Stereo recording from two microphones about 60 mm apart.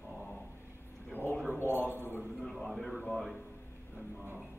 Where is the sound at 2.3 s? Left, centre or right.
Centre.